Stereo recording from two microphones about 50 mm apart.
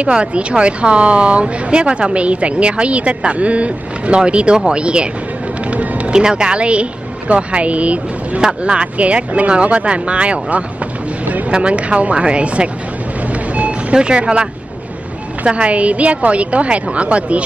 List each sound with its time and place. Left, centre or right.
0.0 s speech: right
11.2 s a sound: right
11.5 s speech: right
13.3 s vehicle: right
13.9 s speech: centre